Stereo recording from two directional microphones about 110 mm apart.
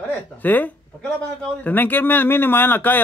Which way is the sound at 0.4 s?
15° left (ahead or behind).